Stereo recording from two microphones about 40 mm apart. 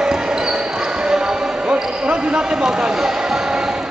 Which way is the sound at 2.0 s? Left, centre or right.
Right.